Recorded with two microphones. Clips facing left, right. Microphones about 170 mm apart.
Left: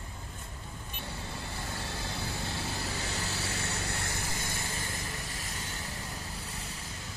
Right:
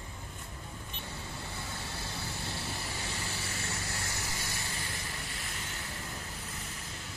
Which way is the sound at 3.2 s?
70° left (ahead or behind).